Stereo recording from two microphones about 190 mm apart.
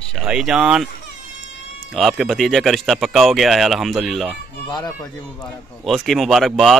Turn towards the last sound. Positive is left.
turn(degrees=0)  # may be behind; listen again after turning